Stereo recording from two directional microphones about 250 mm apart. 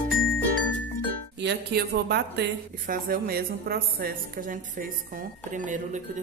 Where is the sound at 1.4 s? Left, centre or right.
Right.